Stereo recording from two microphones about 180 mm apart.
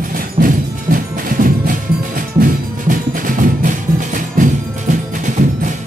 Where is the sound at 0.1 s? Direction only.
50° right (ahead or behind).